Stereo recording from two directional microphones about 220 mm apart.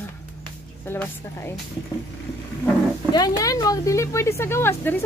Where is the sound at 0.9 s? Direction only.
10° left (ahead or behind).